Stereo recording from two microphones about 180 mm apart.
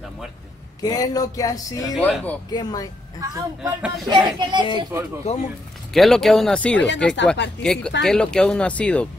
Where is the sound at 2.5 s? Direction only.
20° left (ahead or behind).